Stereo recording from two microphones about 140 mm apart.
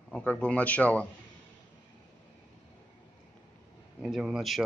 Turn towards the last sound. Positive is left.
turn(degrees=0)  # may be behind; listen again after turning